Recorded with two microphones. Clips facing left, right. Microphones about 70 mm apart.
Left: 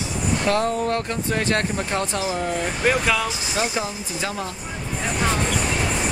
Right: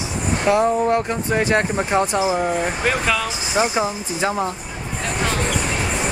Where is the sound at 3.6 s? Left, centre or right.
Right.